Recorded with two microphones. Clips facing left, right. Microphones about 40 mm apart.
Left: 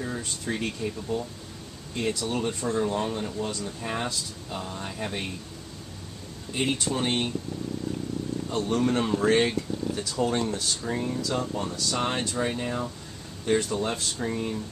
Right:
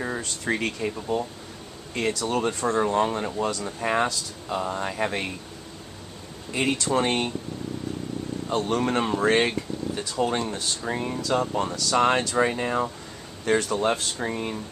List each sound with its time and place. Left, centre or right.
0.2 s speech: right
2.0 s speech: right
2.6 s speech: right
2.9 s speech: right
3.3 s speech: right
6.6 s speech: right
8.5 s speech: right
11.1 s speech: right
11.7 s speech: right
13.5 s speech: right
14.1 s speech: right